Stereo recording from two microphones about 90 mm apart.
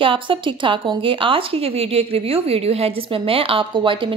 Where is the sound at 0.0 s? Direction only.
75° right (ahead or behind).